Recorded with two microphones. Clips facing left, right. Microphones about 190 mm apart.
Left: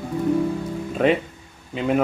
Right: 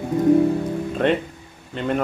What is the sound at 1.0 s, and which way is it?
Speech, 5° left (ahead or behind).